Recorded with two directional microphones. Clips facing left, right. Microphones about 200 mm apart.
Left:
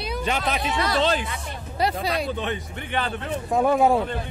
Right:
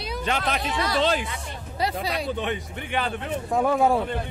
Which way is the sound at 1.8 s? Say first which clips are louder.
Left 3 dB; 55° left (ahead or behind).